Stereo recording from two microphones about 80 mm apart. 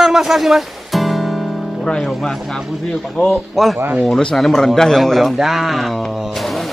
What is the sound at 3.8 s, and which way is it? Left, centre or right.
Speech, right.